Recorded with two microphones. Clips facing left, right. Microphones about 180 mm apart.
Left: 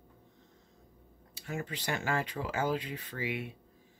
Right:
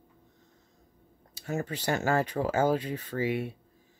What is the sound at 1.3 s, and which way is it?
Speech, 45° right (ahead or behind).